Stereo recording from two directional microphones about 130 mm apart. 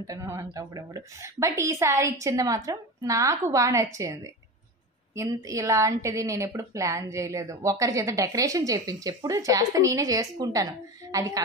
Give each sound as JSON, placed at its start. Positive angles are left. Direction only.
{"t": 0.0, "sound": "speech", "side_deg": -25}